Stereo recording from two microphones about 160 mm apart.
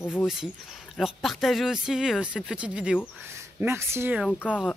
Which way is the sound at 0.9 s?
Centre (ahead or behind).